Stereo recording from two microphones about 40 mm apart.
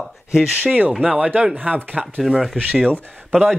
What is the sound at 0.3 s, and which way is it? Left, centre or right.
Speech, centre.